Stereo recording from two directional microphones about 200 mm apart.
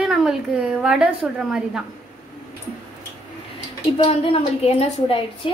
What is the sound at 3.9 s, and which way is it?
A woman's voice, 30° left (ahead or behind).